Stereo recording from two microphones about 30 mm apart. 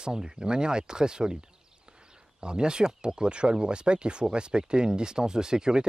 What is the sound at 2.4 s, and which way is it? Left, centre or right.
Speech, right.